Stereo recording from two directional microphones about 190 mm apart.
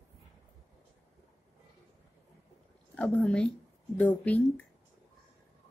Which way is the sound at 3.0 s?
5° left (ahead or behind).